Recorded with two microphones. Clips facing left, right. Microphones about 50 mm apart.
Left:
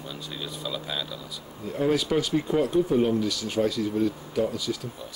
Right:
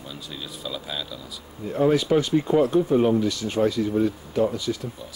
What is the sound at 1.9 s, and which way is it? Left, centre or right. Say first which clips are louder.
Speech: right 4 dB; centre.